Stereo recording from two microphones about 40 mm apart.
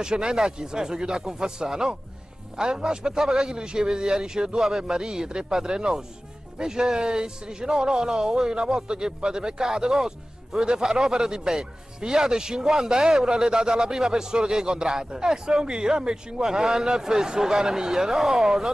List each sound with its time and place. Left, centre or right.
0.0 s a man's voice: centre